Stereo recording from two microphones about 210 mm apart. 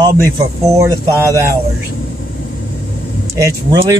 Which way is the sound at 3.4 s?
15° right (ahead or behind).